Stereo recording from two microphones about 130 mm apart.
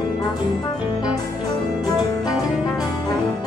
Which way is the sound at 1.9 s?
30° left (ahead or behind).